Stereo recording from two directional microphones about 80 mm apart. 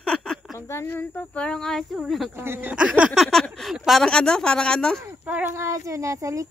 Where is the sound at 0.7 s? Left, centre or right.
Left.